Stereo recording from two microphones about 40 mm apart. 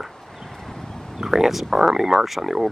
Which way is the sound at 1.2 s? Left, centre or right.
Centre.